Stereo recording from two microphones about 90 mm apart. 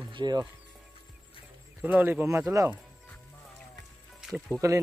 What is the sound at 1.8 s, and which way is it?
Speech, 20° right (ahead or behind).